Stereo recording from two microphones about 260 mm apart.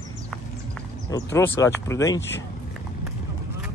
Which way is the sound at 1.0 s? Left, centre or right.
Centre.